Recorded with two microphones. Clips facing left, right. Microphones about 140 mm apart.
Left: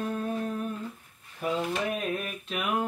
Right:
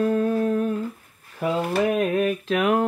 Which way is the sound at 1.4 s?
75° right (ahead or behind).